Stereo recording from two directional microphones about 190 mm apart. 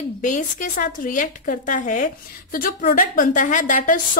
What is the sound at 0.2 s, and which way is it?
A woman's voice, 40° left (ahead or behind).